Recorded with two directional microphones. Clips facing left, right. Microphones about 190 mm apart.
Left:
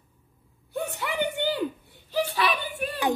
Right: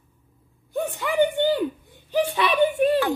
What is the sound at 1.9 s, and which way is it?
A child's voice, 15° right (ahead or behind).